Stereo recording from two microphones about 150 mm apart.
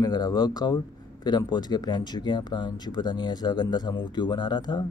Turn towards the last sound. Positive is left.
turn(degrees=30)  # may be behind; listen again after turning